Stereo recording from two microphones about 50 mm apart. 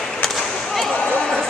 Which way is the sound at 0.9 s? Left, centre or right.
Left.